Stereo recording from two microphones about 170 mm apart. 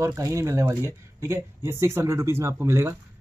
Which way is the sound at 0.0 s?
15° right (ahead or behind).